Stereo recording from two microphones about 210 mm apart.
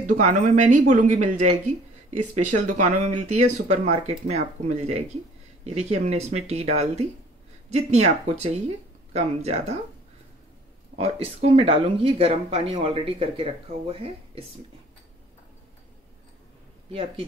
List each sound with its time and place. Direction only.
0.0 s speech: 35° right (ahead or behind)
3.1 s speech: 90° right
3.3 s speech: 35° right (ahead or behind)
11.0 s speech: 30° right (ahead or behind)